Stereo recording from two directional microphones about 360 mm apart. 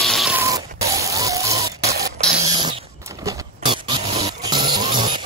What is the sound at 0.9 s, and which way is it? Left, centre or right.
Printer, centre.